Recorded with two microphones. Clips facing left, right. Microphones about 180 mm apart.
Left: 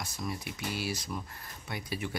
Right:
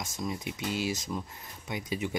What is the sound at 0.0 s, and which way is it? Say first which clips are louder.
Speech: right 3 dB; 20° right (ahead or behind).